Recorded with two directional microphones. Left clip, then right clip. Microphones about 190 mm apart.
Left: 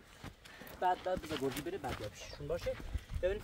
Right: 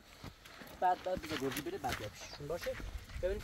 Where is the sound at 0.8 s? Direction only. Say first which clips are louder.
Right 1 dB; 25° left (ahead or behind).